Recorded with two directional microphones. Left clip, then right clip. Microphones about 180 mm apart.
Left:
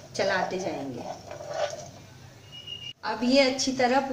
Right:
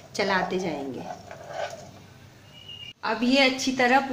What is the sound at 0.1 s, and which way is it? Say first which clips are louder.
Speech: right 1 dB; 35° right (ahead or behind).